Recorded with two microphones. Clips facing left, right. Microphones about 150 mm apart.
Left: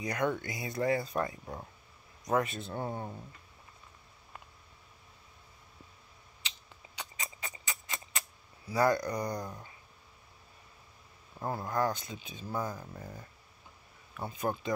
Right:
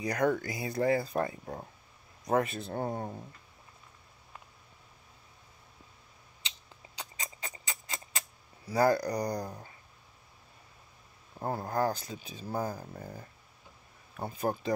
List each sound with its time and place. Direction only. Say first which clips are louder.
0.0 s speech: right 3 dB; 35° right (ahead or behind)
7.0 s a sound: even; 30° right (ahead or behind)
8.6 s speech: right 2 dB; 35° right (ahead or behind)
11.3 s speech: right 1 dB; 35° right (ahead or behind)